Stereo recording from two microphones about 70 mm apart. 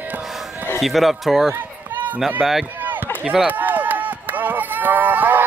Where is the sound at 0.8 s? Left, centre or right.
Centre.